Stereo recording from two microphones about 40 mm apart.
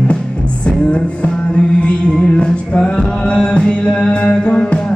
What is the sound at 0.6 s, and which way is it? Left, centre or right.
Music, left.